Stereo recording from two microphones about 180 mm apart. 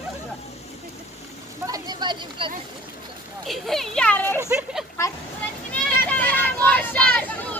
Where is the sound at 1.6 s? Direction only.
20° right (ahead or behind).